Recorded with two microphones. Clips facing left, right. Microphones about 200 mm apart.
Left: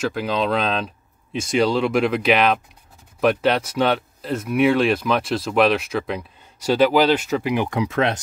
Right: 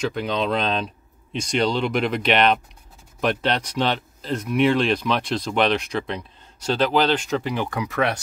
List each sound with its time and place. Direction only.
0.0 s speech: 5° left (ahead or behind); by 8.2 s 20° left (ahead or behind)